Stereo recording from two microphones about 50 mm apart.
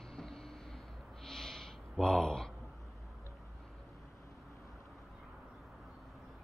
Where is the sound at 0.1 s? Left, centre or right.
Centre.